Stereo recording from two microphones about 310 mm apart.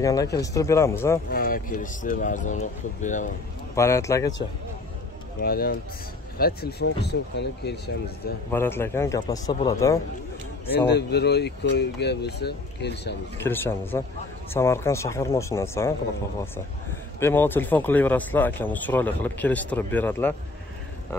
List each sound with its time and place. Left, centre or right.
0.0 s speech: centre
1.3 s speech: left
3.7 s speech: centre
5.4 s speech: left
8.5 s speech: centre
10.9 s speech: left
13.4 s speech: centre
17.2 s speech: centre